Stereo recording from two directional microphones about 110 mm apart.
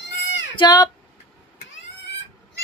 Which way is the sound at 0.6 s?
40° left (ahead or behind).